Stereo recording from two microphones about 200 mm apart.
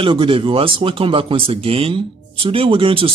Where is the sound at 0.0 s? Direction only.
25° right (ahead or behind).